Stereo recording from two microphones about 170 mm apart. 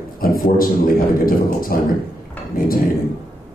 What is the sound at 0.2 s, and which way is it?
A man's voice, 60° left (ahead or behind).